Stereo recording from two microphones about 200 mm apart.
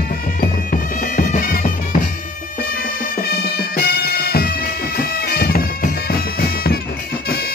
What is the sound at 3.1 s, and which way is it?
Bagpipes, 50° left (ahead or behind).